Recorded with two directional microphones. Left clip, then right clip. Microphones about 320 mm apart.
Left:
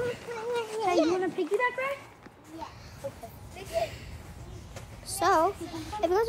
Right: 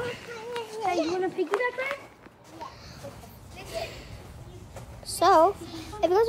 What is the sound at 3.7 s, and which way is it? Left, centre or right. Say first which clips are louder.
Children playing: left 4 dB; centre.